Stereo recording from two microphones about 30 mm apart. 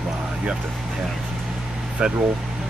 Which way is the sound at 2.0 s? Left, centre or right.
Right.